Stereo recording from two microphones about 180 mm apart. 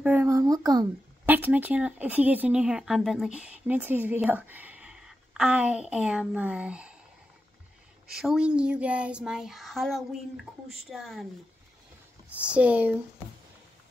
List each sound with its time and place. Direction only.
0.0 s speech: 10° right (ahead or behind)
1.2 s speech: 10° right (ahead or behind)
8.1 s child singing: centre (ahead or behind)
12.4 s speech: 5° right (ahead or behind)